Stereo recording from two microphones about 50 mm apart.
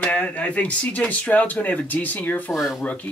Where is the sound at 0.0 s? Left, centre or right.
Left.